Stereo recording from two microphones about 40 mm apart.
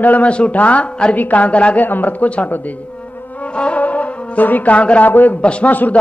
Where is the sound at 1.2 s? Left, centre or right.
Left.